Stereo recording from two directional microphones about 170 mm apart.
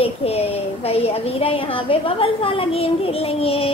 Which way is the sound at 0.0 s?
35° left (ahead or behind).